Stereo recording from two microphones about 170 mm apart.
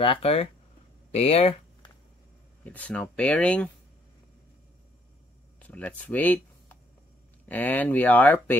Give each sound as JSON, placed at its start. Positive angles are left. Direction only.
{"t": 0.0, "sound": "speech", "side_deg": 35}
{"t": 1.1, "sound": "a sound", "side_deg": 35}
{"t": 2.6, "sound": "speech", "side_deg": 10}
{"t": 5.6, "sound": "speech", "side_deg": 10}